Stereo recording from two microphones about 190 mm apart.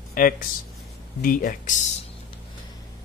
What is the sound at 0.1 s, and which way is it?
Speech, 45° left (ahead or behind).